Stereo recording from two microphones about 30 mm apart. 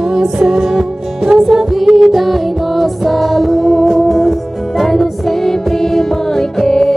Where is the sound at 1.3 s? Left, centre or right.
Right.